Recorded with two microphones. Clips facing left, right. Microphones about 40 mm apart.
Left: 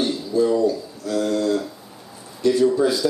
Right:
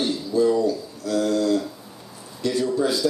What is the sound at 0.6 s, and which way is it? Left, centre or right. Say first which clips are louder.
Speech: left 2 dB; left.